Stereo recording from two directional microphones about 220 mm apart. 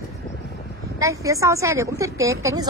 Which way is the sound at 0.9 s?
15° right (ahead or behind).